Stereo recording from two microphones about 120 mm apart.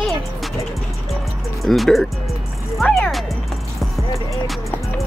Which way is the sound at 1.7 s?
Centre (ahead or behind).